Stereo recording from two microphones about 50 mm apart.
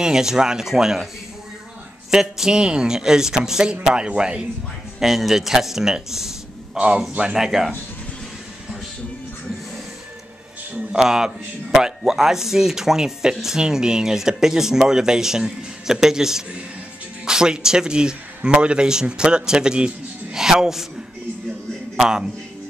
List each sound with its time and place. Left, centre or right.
0.0 s a man's voice: centre
2.0 s a man's voice: centre
5.0 s a man's voice: centre
10.9 s a man's voice: centre
21.9 s speech: centre